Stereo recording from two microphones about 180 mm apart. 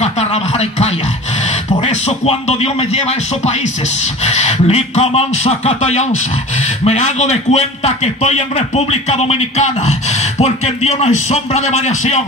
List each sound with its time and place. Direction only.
0.0 s a man's voice: 35° left (ahead or behind)